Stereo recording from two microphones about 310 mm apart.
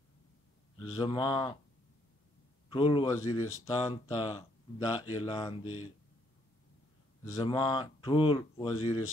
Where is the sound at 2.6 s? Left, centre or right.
Centre.